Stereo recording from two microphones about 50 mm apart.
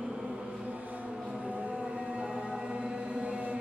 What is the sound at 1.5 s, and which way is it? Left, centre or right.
Train, right.